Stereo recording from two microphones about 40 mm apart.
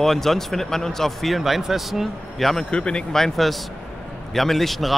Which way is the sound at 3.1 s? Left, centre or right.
Centre.